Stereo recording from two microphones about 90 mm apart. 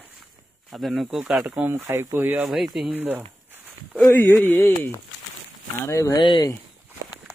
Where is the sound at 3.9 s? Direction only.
15° left (ahead or behind); by 6.1 s 35° left (ahead or behind).